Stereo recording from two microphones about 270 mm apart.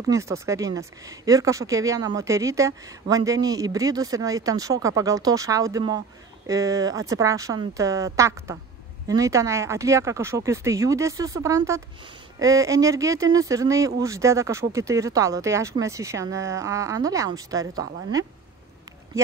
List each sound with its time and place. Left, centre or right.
0.1 s speech: centre